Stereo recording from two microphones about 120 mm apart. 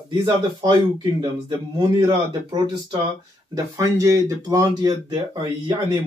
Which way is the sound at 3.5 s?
30° right (ahead or behind).